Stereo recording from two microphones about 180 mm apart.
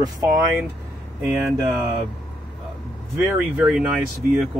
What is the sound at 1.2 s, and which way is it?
Speech, 15° right (ahead or behind).